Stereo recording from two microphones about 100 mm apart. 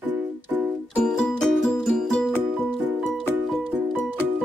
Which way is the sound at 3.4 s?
Centre (ahead or behind).